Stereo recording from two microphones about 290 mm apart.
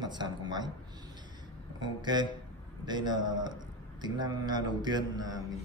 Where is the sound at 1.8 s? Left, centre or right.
Centre.